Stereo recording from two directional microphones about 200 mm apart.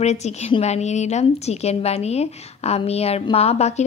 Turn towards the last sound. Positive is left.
turn(degrees=30)  # may be behind; listen again after turning